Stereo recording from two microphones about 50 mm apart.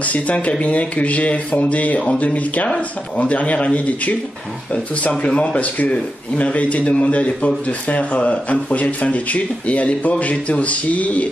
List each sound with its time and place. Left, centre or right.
0.0 s speech: left
5.2 s speech: left